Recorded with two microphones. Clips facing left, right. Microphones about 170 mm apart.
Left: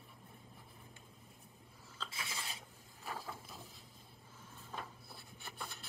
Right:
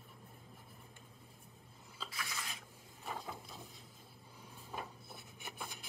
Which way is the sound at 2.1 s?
25° left (ahead or behind).